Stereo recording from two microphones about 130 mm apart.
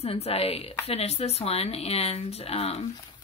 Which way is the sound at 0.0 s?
50° left (ahead or behind).